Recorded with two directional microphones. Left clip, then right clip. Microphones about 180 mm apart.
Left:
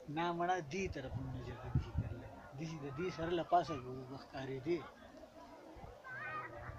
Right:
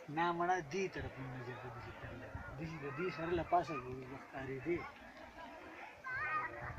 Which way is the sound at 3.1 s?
5° left (ahead or behind).